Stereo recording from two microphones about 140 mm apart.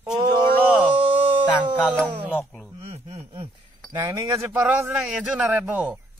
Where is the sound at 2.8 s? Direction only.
45° right (ahead or behind).